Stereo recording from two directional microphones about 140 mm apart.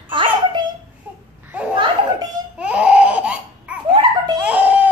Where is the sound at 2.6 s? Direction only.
10° right (ahead or behind).